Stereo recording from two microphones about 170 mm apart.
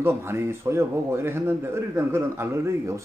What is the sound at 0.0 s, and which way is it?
A man's voice, 15° right (ahead or behind).